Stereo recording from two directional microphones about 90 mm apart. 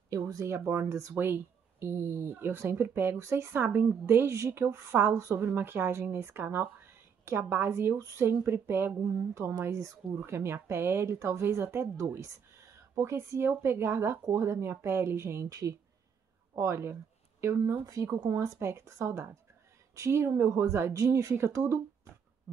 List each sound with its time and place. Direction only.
0.1 s speech: 40° right (ahead or behind)
0.6 s speech: 25° right (ahead or behind); by 18.5 s 45° right (ahead or behind)
18.6 s speech: 30° right (ahead or behind)